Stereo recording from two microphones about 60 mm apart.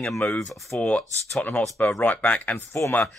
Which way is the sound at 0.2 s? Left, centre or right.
Left.